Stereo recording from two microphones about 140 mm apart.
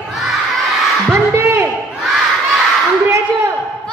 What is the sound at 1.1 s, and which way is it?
Music, 15° right (ahead or behind).